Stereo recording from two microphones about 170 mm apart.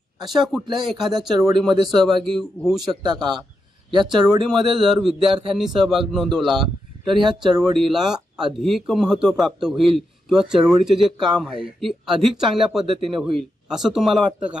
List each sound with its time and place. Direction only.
0.5 s speech: centre (ahead or behind)
3.0 s a man's voice: 25° right (ahead or behind)
4.6 s speech: centre (ahead or behind)
7.7 s speech: centre (ahead or behind)